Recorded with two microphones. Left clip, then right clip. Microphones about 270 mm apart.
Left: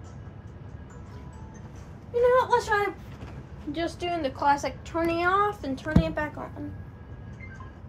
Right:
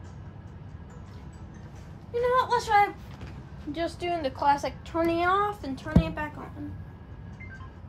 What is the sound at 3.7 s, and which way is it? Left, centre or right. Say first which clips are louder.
A woman's voice: even; right.